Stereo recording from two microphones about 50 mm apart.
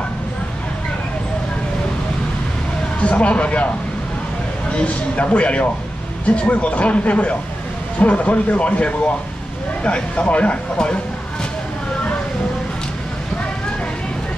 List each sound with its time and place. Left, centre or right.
3.0 s speech: left
4.7 s speech: left